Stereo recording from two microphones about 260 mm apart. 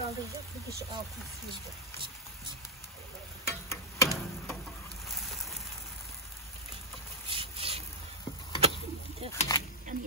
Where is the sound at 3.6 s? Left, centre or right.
Centre.